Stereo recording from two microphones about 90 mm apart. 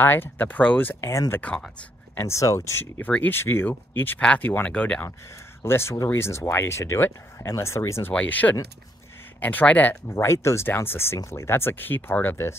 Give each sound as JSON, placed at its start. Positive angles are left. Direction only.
{"t": 0.0, "sound": "speech", "side_deg": 25}
{"t": 2.1, "sound": "speech", "side_deg": 30}
{"t": 5.6, "sound": "speech", "side_deg": 30}
{"t": 8.1, "sound": "speech", "side_deg": 15}
{"t": 10.0, "sound": "speech", "side_deg": 30}